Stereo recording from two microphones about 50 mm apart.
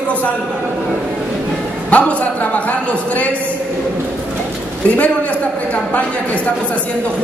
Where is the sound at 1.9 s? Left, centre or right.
Left.